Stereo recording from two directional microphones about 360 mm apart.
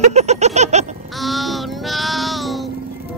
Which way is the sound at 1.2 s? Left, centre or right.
Centre.